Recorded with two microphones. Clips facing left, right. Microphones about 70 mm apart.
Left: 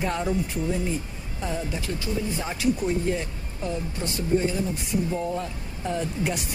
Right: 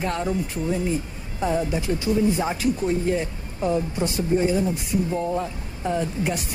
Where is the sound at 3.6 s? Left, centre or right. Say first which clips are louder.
Right 7 dB; right.